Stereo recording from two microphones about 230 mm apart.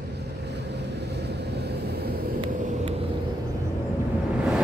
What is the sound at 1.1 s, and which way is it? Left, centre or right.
Vehicle, right.